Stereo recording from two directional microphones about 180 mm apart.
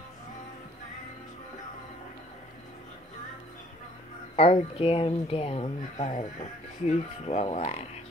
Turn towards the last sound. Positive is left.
turn(degrees=35)  # may be behind; listen again after turning